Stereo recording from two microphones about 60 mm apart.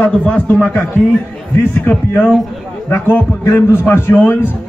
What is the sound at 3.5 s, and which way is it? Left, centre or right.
Speech, left.